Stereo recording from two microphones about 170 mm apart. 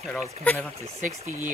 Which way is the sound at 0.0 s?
Centre (ahead or behind).